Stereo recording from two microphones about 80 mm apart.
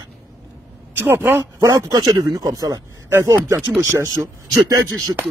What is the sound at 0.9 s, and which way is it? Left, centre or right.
Speech, right.